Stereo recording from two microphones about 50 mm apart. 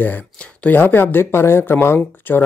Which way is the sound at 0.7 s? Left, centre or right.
Left.